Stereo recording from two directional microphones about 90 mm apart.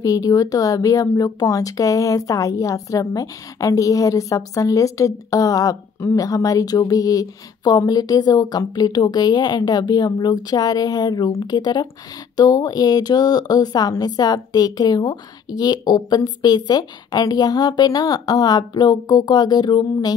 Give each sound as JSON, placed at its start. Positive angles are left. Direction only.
{"t": 0.0, "sound": "a woman's voice", "side_deg": 40}